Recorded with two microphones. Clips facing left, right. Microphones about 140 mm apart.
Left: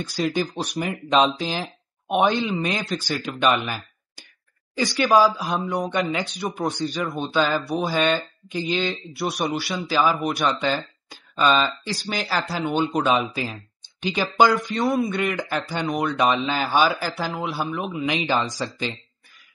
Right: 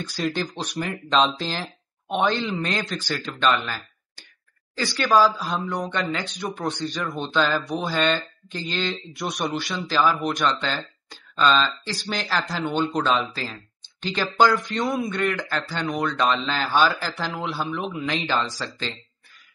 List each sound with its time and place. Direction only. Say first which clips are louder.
0.2 s speech: left 3 dB; 5° left (ahead or behind)
8.5 s speech: left 4 dB; 15° left (ahead or behind)
18.0 s speech: left 3 dB; 15° left (ahead or behind)